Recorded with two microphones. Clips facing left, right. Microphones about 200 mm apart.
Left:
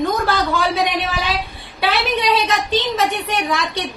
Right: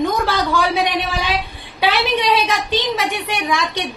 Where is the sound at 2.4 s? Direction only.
10° right (ahead or behind).